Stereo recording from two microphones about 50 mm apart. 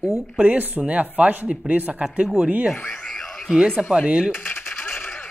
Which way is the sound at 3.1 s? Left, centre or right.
Centre.